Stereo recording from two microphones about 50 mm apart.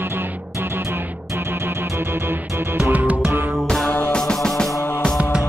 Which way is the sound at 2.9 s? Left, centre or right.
Right.